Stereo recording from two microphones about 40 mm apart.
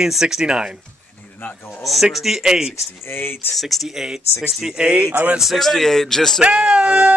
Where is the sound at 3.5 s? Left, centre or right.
Centre.